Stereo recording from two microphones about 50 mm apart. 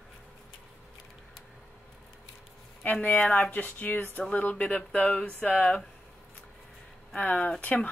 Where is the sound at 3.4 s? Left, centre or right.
Left.